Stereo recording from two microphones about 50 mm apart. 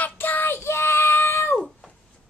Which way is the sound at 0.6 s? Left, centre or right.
Left.